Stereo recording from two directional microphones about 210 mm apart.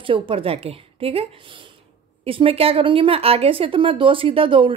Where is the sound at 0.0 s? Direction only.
25° right (ahead or behind).